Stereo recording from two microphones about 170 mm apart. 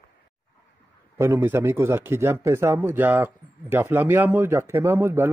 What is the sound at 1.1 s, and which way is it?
Speech, 15° right (ahead or behind).